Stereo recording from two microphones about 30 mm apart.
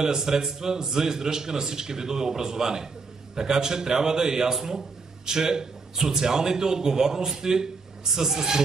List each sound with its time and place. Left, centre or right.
0.0 s a man's voice: right